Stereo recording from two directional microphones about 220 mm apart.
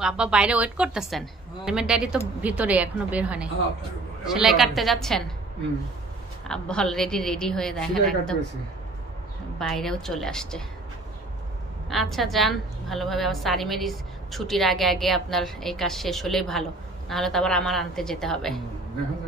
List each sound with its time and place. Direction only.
0.0 s a woman's voice: 5° right (ahead or behind)
6.4 s a woman's voice: 5° left (ahead or behind)
9.6 s a woman's voice: centre (ahead or behind)
11.9 s a woman's voice: centre (ahead or behind)